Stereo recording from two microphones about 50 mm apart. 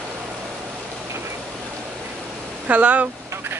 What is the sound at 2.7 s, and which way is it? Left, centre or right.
Speech, right.